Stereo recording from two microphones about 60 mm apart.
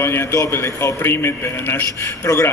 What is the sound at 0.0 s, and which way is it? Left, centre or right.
A man's voice, left.